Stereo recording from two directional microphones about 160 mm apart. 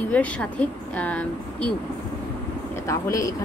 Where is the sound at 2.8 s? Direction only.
20° left (ahead or behind).